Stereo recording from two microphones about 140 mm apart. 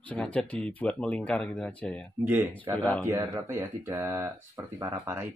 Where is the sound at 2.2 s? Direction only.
15° right (ahead or behind).